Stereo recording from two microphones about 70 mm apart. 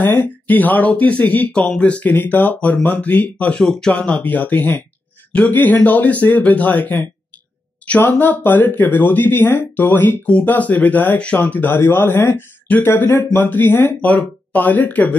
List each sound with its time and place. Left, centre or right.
0.0 s speech: left
1.6 s speech: centre
3.5 s a woman's voice: centre; by 15.1 s left